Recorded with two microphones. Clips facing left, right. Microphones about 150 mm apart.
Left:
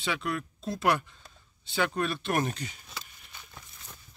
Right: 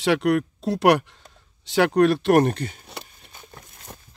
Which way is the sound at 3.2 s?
35° right (ahead or behind).